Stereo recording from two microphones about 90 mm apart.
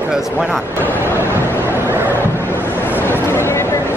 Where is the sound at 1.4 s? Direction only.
25° left (ahead or behind).